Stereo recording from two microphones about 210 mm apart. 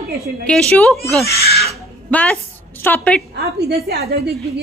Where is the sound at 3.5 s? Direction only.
50° right (ahead or behind).